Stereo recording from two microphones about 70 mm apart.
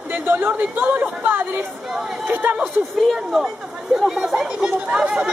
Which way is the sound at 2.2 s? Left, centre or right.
Right.